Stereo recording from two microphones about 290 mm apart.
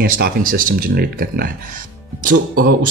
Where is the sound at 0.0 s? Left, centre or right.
Right.